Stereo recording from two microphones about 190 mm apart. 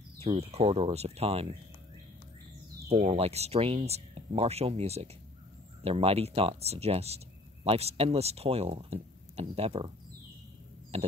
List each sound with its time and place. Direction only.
0.2 s speech: 30° right (ahead or behind)
2.9 s speech: 30° right (ahead or behind)
10.9 s a sound: 35° right (ahead or behind)